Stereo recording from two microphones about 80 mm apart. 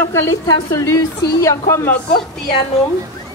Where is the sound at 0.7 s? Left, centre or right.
Left.